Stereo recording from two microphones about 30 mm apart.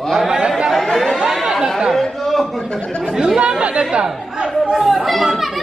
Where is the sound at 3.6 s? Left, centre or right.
Right.